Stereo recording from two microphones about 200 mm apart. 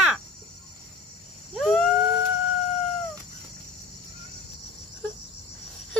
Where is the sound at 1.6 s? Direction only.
Centre (ahead or behind).